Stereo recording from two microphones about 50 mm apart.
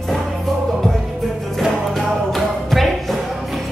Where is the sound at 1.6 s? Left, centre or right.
Centre.